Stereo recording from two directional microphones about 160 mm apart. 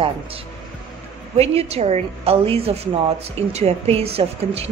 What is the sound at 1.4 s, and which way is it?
A woman's voice, 40° right (ahead or behind).